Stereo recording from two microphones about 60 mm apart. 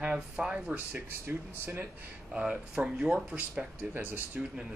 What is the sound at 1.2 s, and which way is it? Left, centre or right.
Speech, right.